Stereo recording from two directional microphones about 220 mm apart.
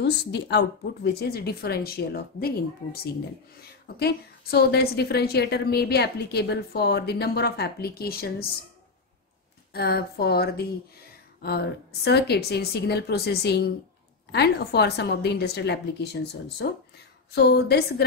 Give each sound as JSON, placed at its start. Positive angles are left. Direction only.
{"t": 0.0, "sound": "a woman's voice", "side_deg": 50}
{"t": 9.8, "sound": "a woman's voice", "side_deg": 45}